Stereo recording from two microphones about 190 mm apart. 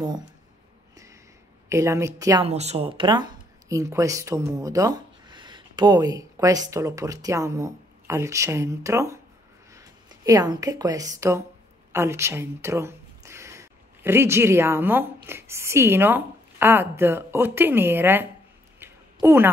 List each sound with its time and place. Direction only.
1.7 s a woman's voice: 15° right (ahead or behind)
2.4 s a woman's voice: 35° right (ahead or behind); by 18.2 s 10° right (ahead or behind)
18.8 s a sound: 10° right (ahead or behind)